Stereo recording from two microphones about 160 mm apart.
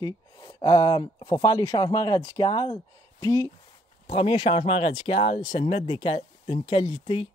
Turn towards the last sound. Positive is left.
turn(degrees=35)  # may be behind; listen again after turning